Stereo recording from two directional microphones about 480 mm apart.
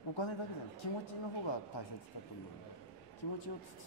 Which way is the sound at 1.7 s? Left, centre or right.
Left.